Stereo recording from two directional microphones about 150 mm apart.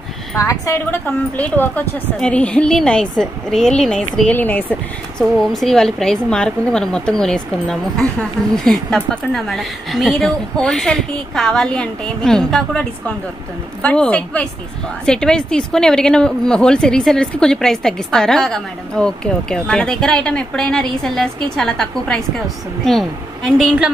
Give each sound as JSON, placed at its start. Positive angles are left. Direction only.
{"t": 0.4, "sound": "a woman's voice", "side_deg": 20}
{"t": 1.0, "sound": "a woman's voice", "side_deg": 10}